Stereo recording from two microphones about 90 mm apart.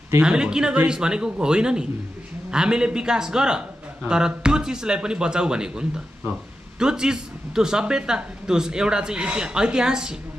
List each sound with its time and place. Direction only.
0.2 s a man's voice: 10° right (ahead or behind)